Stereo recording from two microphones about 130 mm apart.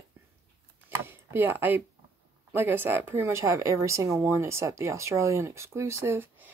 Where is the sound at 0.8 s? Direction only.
15° right (ahead or behind).